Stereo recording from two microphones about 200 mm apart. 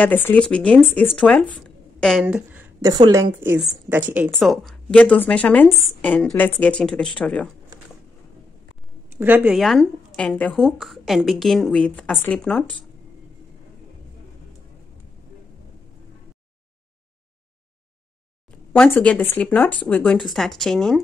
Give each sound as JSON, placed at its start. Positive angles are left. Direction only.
{"t": 0.0, "sound": "a woman's voice", "side_deg": 10}
{"t": 2.2, "sound": "a sound", "side_deg": -10}
{"t": 2.9, "sound": "a woman's voice", "side_deg": -15}
{"t": 9.1, "sound": "a woman's voice", "side_deg": -10}
{"t": 18.7, "sound": "speech", "side_deg": 10}